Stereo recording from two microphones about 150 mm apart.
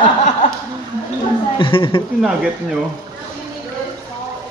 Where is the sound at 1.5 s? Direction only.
35° left (ahead or behind).